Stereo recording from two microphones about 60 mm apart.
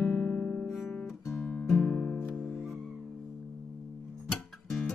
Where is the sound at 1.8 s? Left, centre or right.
Left.